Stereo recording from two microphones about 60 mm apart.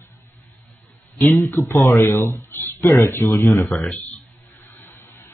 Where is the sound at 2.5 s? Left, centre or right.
Left.